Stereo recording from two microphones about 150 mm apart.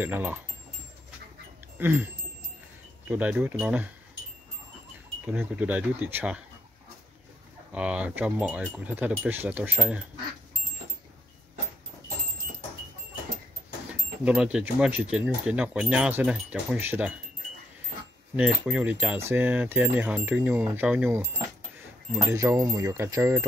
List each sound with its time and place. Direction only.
0.0 s speech: 15° right (ahead or behind)
1.8 s speech: 15° right (ahead or behind)
3.1 s speech: 10° right (ahead or behind)
5.2 s speech: 10° right (ahead or behind)
7.7 s speech: 10° right (ahead or behind)
14.2 s speech: 5° right (ahead or behind)
18.3 s speech: 10° right (ahead or behind)
22.2 s speech: 20° right (ahead or behind)